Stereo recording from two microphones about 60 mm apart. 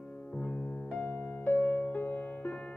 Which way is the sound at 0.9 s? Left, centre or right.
Left.